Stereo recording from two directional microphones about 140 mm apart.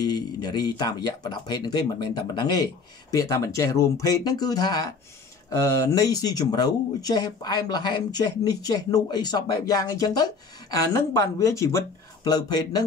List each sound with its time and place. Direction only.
0.0 s speech: 30° left (ahead or behind)